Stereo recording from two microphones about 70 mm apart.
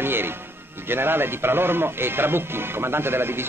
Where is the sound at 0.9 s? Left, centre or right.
Right.